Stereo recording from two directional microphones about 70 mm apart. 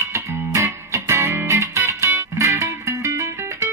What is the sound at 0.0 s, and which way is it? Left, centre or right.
Music, right.